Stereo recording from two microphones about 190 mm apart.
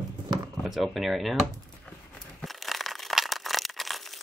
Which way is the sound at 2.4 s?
Centre (ahead or behind).